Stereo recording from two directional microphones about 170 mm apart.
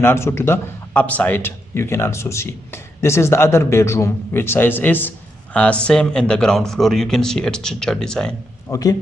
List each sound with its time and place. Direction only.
0.0 s a man's voice: 15° left (ahead or behind)
8.6 s a man's voice: 20° left (ahead or behind)